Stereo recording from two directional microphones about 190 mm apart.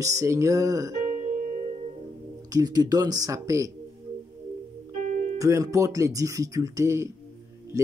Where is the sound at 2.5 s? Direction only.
20° right (ahead or behind).